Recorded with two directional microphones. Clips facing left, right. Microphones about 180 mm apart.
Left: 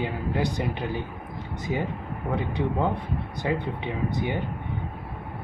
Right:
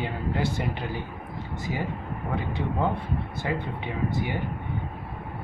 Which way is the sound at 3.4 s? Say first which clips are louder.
Left 5 dB; 20° left (ahead or behind).